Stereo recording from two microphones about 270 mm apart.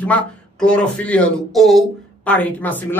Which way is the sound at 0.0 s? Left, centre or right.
Centre.